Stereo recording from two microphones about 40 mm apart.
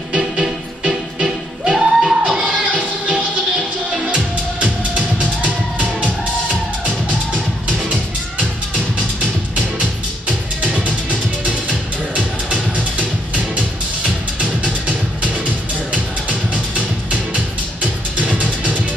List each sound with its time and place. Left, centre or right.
0.4 s music: centre
2.4 s music: right
7.6 s music: right
10.8 s music: right
12.7 s music: right